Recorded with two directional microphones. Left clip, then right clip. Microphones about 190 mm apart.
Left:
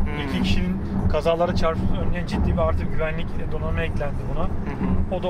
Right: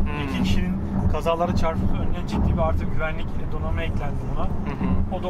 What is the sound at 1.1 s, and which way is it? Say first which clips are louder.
Speech: left 3 dB; 35° left (ahead or behind).